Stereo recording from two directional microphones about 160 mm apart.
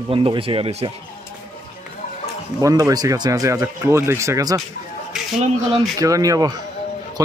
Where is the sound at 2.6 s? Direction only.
20° right (ahead or behind).